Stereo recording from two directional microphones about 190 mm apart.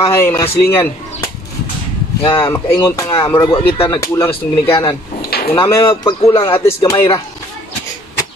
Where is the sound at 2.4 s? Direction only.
15° left (ahead or behind).